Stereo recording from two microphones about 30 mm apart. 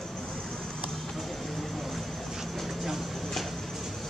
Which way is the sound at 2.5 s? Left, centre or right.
Centre.